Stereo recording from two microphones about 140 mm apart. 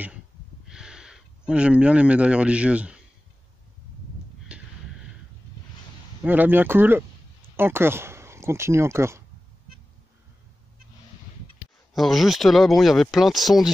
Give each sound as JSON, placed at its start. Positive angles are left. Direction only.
{"t": 0.7, "sound": "speech", "side_deg": -5}
{"t": 4.5, "sound": "a sound", "side_deg": -5}
{"t": 6.2, "sound": "speech", "side_deg": -15}
{"t": 11.9, "sound": "speech", "side_deg": 0}